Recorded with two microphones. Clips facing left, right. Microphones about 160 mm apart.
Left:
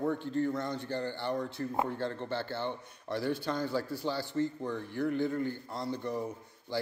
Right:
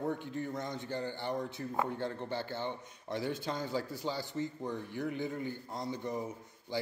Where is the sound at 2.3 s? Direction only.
65° left (ahead or behind).